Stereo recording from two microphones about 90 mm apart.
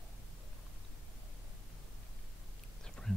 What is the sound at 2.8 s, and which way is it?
Whispering, 10° left (ahead or behind).